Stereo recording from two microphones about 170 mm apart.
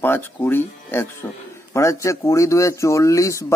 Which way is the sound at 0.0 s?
10° left (ahead or behind).